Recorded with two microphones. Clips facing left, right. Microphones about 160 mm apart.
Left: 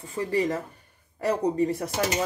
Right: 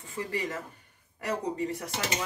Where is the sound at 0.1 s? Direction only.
35° left (ahead or behind).